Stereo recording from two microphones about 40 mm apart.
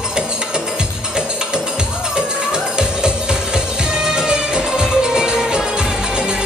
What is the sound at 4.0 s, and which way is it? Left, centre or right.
Music, centre.